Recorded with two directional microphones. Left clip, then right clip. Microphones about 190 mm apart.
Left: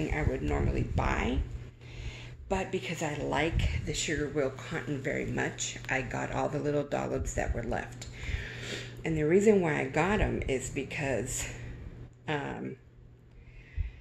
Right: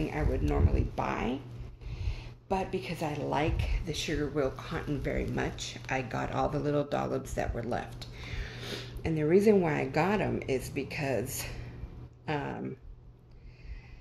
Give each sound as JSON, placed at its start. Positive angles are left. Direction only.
{"t": 0.0, "sound": "speech", "side_deg": 0}